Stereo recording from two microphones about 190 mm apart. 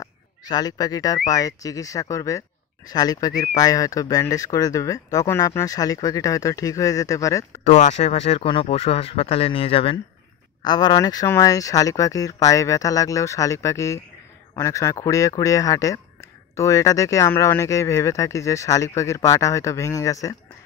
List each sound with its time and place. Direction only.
0.0 s speech: 20° left (ahead or behind)
7.6 s speech: 40° left (ahead or behind); by 20.3 s 15° left (ahead or behind)